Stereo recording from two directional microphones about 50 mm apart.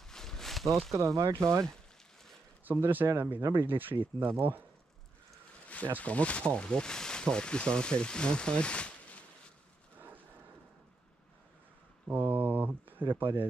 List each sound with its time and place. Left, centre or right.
0.0 s a sound: centre
0.9 s speech: right
2.8 s speech: right
5.9 s speech: left
9.9 s a sound: right
12.1 s speech: right